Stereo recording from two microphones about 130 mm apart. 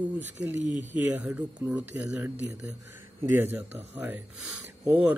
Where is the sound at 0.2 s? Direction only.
15° right (ahead or behind).